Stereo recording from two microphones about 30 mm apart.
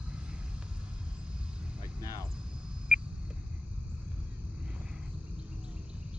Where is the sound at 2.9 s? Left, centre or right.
Right.